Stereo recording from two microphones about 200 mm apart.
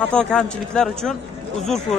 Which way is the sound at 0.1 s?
5° left (ahead or behind).